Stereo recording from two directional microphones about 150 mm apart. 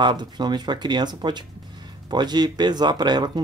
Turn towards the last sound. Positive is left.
turn(degrees=-30)  # may be behind; listen again after turning